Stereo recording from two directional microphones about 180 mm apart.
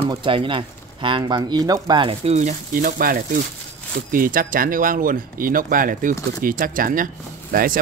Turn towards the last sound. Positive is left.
turn(degrees=-50)  # may be behind; listen again after turning